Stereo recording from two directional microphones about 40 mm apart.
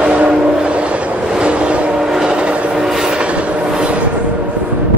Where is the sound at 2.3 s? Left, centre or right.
Right.